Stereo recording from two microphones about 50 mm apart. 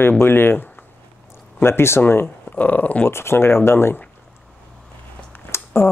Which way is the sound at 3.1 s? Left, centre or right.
Left.